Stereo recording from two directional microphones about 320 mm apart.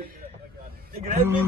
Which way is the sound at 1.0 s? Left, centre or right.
Right.